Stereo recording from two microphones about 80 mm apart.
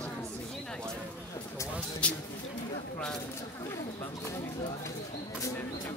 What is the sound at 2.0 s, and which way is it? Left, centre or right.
Speech, centre.